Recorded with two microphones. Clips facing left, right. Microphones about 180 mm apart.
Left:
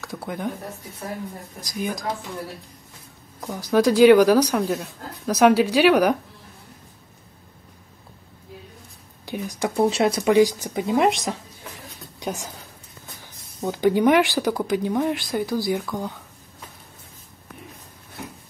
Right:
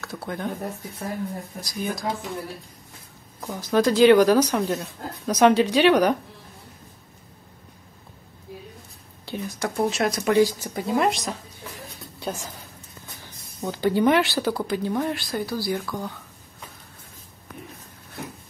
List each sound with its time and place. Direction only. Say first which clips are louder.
0.0 s speech: left 1 dB; 10° left (ahead or behind)
1.6 s speech: left 2 dB; 15° left (ahead or behind)
3.3 s speech: left 2 dB; 15° left (ahead or behind)
9.2 s a sound: left 2 dB; 15° left (ahead or behind)
9.8 s speech: left 4 dB; 30° left (ahead or behind)
10.2 s a woman's voice: left 1 dB; 15° left (ahead or behind)
13.6 s speech: left 2 dB; 15° left (ahead or behind)